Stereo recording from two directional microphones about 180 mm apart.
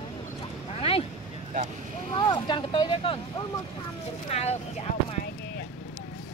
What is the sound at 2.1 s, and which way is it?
Speech, 25° left (ahead or behind).